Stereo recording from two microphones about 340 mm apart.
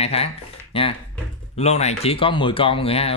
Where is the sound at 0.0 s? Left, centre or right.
Centre.